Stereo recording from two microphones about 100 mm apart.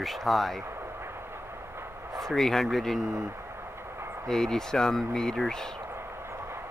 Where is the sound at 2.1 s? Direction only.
5° left (ahead or behind).